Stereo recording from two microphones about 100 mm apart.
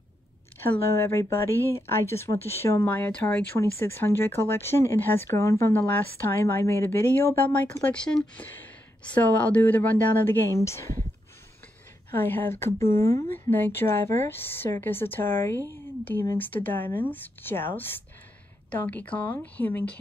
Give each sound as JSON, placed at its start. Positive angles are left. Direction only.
{"t": 0.6, "sound": "speech", "side_deg": 25}
{"t": 3.5, "sound": "a woman's voice", "side_deg": 25}
{"t": 12.2, "sound": "a woman's voice", "side_deg": 20}